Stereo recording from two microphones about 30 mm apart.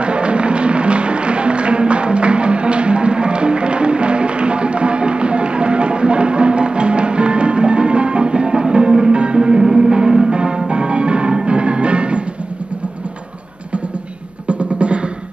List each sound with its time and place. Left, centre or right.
0.0 s music: right
9.6 s music: centre; by 12.2 s right
14.5 s music: right